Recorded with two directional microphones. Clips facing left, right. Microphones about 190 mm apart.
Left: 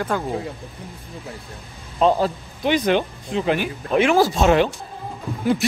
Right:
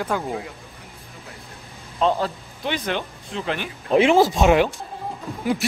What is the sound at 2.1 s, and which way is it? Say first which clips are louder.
Speech: left 4 dB; 15° left (ahead or behind).